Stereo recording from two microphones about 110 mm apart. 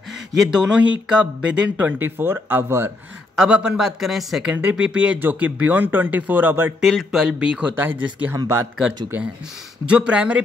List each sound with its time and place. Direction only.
0.4 s speech: 5° right (ahead or behind)
3.3 s speech: 10° right (ahead or behind)
6.8 s speech: centre (ahead or behind); by 8.4 s 20° right (ahead or behind)
9.8 s speech: 10° right (ahead or behind)